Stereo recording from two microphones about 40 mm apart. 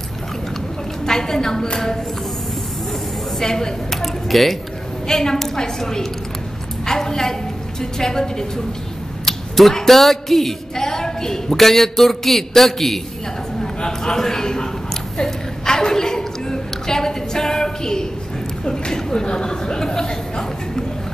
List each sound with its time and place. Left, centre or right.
1.0 s a woman's voice: centre
3.3 s a woman's voice: centre
4.0 s typing: centre
5.0 s a woman's voice: centre
6.9 s a sound: centre
8.0 s a man's voice: centre
13.6 s a sound: centre